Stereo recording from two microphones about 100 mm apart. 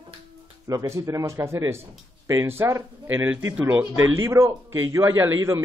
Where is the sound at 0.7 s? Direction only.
35° right (ahead or behind).